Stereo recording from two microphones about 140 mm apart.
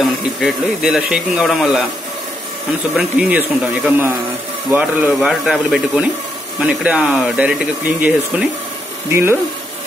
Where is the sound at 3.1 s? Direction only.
10° right (ahead or behind).